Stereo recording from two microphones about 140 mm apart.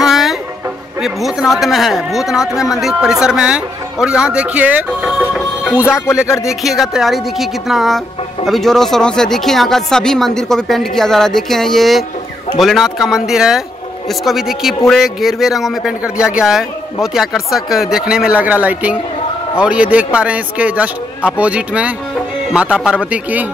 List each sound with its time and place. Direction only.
0.0 s music: centre (ahead or behind)
1.0 s speech: centre (ahead or behind)
6.2 s speech: 20° left (ahead or behind)
6.6 s speech: centre (ahead or behind)